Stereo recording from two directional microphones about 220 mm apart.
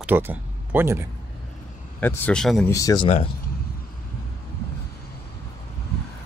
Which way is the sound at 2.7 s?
15° left (ahead or behind).